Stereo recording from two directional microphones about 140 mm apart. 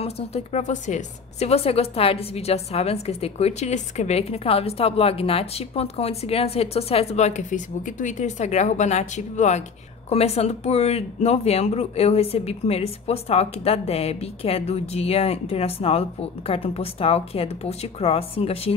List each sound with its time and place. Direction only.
0.0 s a woman's voice: 50° left (ahead or behind)